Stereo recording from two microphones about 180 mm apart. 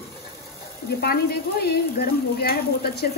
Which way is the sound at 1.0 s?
60° left (ahead or behind).